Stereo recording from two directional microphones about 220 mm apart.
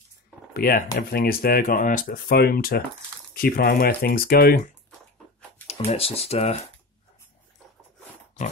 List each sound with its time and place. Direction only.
0.5 s speech: 40° left (ahead or behind)
5.9 s speech: 25° left (ahead or behind)